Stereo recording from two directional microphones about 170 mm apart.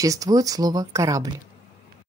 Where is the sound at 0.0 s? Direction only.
20° right (ahead or behind).